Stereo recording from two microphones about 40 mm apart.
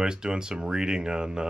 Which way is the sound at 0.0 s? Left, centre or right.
Centre.